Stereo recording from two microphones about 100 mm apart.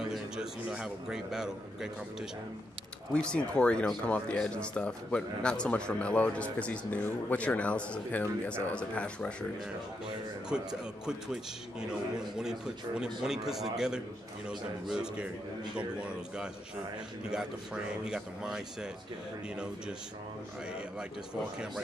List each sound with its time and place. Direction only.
0.1 s speech: 5° right (ahead or behind)
3.1 s speech: 10° left (ahead or behind)
10.0 s a man's voice: 5° right (ahead or behind)
12.2 s a man's voice: 5° right (ahead or behind)
18.0 s a man's voice: 5° right (ahead or behind)